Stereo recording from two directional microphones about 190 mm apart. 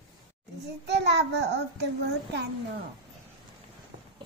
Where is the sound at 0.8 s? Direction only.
60° right (ahead or behind).